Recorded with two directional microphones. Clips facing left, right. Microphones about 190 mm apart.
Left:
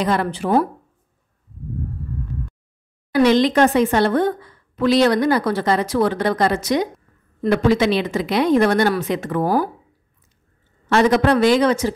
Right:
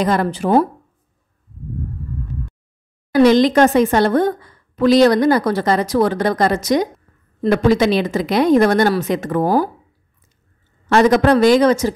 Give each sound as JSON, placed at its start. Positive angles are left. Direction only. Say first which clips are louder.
{"t": 0.0, "sound": "a man's voice", "louder": "right 3 dB", "side_deg": -40}
{"t": 3.1, "sound": "speech", "louder": "right 3 dB", "side_deg": -40}
{"t": 9.4, "sound": "speech", "louder": "right 3 dB", "side_deg": -25}
{"t": 10.9, "sound": "a man's voice", "louder": "right 3 dB", "side_deg": -45}